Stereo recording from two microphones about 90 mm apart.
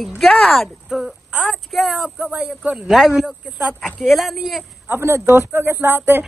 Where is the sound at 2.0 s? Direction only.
15° right (ahead or behind).